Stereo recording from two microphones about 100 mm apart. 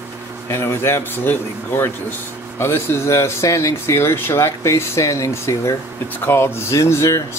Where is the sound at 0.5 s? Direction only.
25° left (ahead or behind).